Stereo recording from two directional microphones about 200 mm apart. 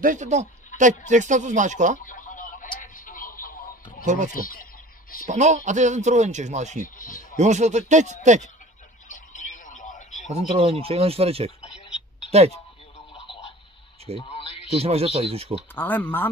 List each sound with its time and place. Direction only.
0.0 s a man's voice: 40° right (ahead or behind)
2.0 s radio: 40° left (ahead or behind)
2.8 s a sound: 40° left (ahead or behind)
4.0 s speech: 35° right (ahead or behind)
4.3 s speech: 45° left (ahead or behind)
5.3 s a man's voice: 35° right (ahead or behind)
7.0 s speech: 45° left (ahead or behind)
7.3 s a man's voice: 35° right (ahead or behind)
9.1 s radio: 40° left (ahead or behind)
10.3 s speech: 30° right (ahead or behind)
14.2 s radio: 30° left (ahead or behind)
14.7 s speech: 30° right (ahead or behind)
15.7 s speech: 10° left (ahead or behind)